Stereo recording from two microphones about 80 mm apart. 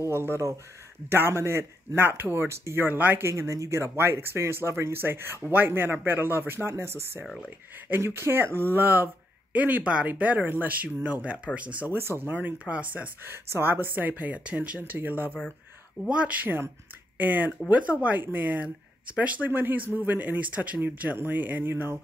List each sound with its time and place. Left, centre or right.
0.0 s speech: right
3.3 s speech: right